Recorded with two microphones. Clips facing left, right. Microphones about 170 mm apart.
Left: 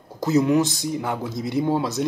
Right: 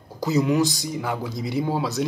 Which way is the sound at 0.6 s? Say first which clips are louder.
Left 1 dB; 25° left (ahead or behind).